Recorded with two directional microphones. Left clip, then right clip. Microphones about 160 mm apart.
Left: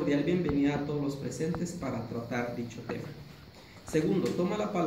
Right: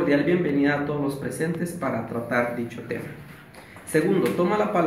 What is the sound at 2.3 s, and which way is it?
Speech, centre (ahead or behind).